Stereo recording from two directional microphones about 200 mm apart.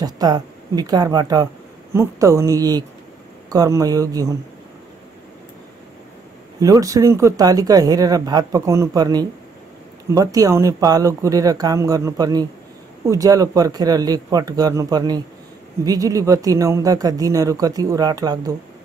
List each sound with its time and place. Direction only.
0.0 s speech: 20° right (ahead or behind)
6.6 s speech: 15° right (ahead or behind)